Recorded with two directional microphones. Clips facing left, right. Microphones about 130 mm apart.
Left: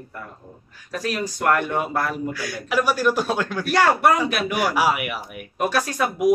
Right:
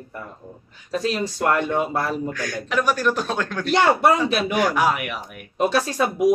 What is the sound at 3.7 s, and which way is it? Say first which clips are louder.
Speech: right 1 dB; 20° right (ahead or behind).